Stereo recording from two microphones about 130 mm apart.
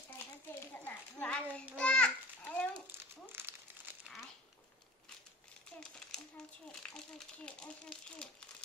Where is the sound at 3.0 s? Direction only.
15° right (ahead or behind).